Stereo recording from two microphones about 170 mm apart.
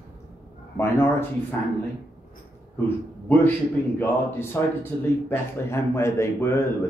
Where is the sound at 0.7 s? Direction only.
15° left (ahead or behind).